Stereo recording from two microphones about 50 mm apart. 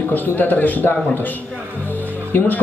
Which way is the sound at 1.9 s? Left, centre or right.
Left.